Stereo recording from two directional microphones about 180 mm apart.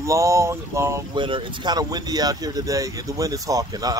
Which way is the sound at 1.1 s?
30° right (ahead or behind).